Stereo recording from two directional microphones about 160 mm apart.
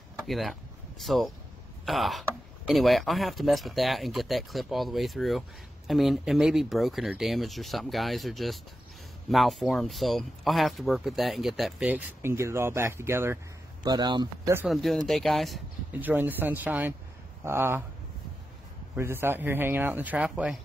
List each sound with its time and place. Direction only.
0.3 s speech: centre (ahead or behind)
11.9 s a man's voice: 15° right (ahead or behind)
13.8 s speech: 25° right (ahead or behind)
14.7 s speech: centre (ahead or behind)
15.9 s a man's voice: 10° right (ahead or behind)
18.9 s a man's voice: 15° right (ahead or behind)